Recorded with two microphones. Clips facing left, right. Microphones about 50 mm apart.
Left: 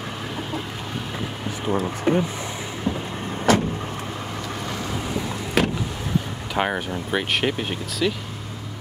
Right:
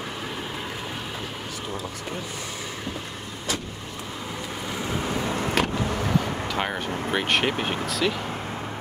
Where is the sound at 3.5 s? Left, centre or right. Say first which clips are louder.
Left 12 dB; left.